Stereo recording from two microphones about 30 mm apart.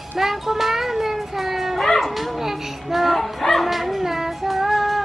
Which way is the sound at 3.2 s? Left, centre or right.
Centre.